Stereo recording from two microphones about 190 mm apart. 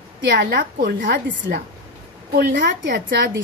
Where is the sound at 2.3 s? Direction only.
60° right (ahead or behind).